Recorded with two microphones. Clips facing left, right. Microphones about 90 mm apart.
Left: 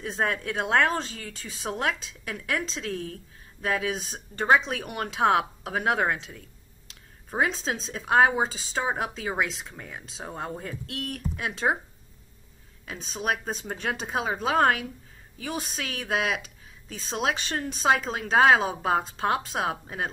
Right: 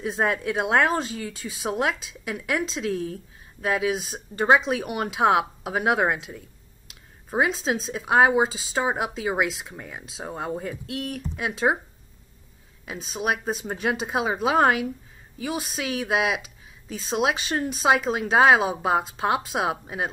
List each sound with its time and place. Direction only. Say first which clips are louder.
0.0 s speech: right 4 dB; 10° right (ahead or behind)
12.8 s speech: right 2 dB; 10° right (ahead or behind)